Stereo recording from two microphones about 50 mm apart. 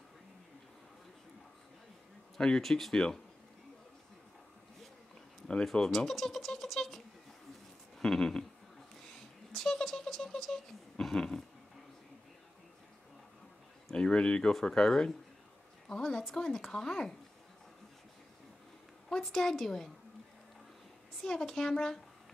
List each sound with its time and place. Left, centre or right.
2.3 s speech: centre
5.7 s speech: centre
8.0 s a sound: centre
13.9 s speech: centre
19.0 s speech: centre
21.2 s speech: centre